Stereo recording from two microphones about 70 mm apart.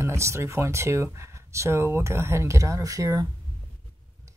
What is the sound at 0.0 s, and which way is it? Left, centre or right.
Speech, right.